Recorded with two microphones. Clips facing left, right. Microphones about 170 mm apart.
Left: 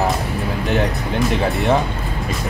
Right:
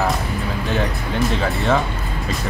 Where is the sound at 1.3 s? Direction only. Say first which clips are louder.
Left 3 dB; 20° left (ahead or behind).